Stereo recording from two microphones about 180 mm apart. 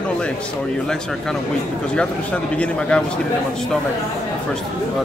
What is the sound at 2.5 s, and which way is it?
Speech, 5° left (ahead or behind).